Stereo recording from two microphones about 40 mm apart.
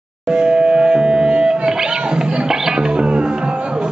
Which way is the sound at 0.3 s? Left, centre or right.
Right.